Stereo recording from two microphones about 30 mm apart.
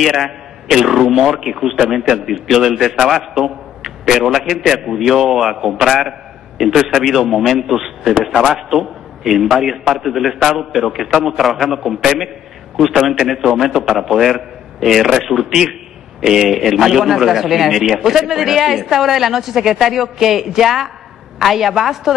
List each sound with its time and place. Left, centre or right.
0.0 s a man's voice: centre
16.2 s a man's voice: centre